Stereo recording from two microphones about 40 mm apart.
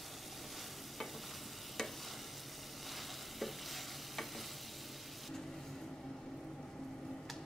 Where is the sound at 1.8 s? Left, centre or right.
Centre.